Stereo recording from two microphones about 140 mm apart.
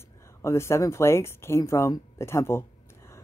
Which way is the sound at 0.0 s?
20° left (ahead or behind).